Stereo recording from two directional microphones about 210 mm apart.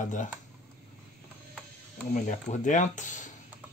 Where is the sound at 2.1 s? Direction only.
35° left (ahead or behind).